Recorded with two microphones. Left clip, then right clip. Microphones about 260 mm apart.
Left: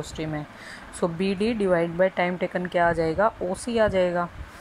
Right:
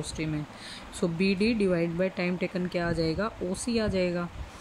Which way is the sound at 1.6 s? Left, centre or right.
Left.